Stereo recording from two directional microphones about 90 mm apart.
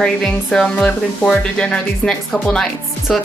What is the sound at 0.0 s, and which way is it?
Speech, 10° left (ahead or behind).